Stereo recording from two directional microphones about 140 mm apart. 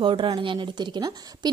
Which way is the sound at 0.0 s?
35° right (ahead or behind).